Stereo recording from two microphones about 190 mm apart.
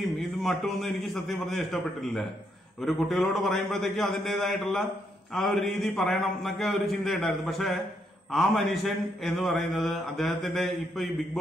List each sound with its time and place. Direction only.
0.4 s speech: centre (ahead or behind)